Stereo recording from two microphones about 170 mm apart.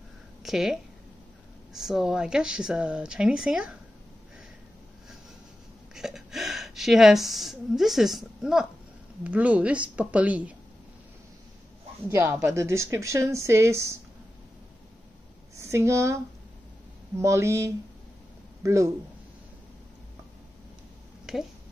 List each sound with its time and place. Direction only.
0.4 s speech: centre (ahead or behind)
5.9 s speech: centre (ahead or behind)
12.1 s speech: 15° right (ahead or behind)
15.5 s speech: 15° right (ahead or behind)
17.2 s speech: 15° right (ahead or behind)